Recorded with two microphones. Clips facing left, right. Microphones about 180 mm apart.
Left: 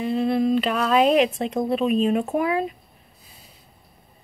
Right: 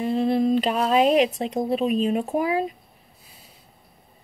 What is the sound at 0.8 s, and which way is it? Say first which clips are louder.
Speech: left 1 dB; 40° right (ahead or behind).